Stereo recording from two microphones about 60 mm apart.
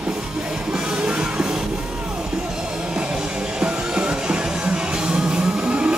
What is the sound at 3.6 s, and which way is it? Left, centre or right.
Music, centre.